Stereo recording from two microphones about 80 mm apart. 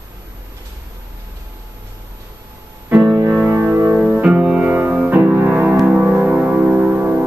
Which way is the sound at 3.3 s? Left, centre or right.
Centre.